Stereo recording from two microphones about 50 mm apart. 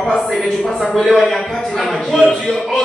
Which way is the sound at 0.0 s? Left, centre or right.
Centre.